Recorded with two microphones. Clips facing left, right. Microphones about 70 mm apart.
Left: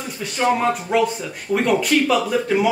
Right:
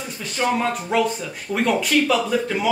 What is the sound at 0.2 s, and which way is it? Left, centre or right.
Speech, centre.